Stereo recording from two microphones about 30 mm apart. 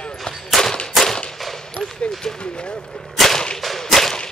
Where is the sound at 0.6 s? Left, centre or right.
Centre.